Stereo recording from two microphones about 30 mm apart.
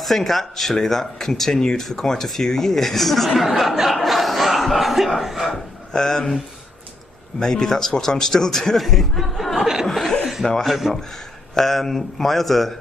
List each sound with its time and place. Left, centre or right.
0.0 s speech: centre
1.5 s speech: left
1.8 s speech: centre
3.7 s chuckle: centre
5.5 s a sound: centre
7.3 s speech: centre
8.7 s speech: centre
9.8 s chuckle: centre
10.6 s speech: centre